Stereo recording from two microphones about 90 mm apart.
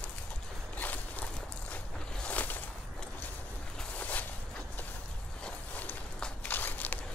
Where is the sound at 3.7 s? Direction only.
15° left (ahead or behind).